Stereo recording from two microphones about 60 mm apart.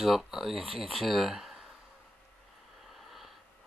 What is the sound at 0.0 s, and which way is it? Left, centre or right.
Speech, centre.